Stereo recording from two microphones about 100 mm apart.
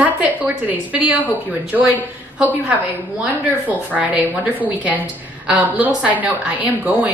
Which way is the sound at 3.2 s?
15° right (ahead or behind).